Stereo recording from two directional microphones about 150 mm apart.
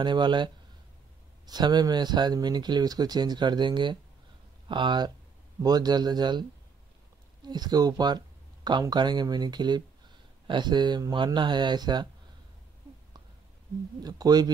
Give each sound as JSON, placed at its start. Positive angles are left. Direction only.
{"t": 0.0, "sound": "speech", "side_deg": -30}
{"t": 7.4, "sound": "speech", "side_deg": -25}
{"t": 14.0, "sound": "speech", "side_deg": -25}